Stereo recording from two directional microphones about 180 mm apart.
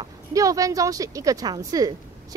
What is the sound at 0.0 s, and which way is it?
Speech, 20° right (ahead or behind).